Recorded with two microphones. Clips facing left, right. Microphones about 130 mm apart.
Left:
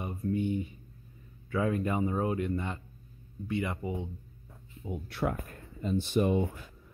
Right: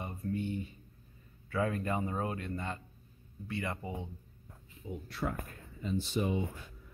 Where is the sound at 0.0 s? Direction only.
15° left (ahead or behind).